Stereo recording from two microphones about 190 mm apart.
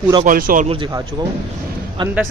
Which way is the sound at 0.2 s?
45° right (ahead or behind).